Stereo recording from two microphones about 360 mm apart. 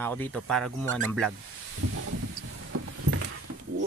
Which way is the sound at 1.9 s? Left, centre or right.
Right.